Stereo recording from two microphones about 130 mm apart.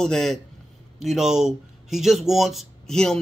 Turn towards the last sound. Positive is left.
turn(degrees=5)  # may be behind; listen again after turning